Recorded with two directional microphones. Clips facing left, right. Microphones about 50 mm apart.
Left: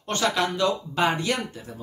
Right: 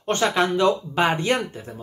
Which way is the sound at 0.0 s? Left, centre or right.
Right.